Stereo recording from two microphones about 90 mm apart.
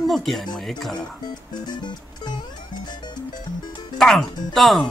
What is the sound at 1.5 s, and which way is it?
Music, 50° left (ahead or behind).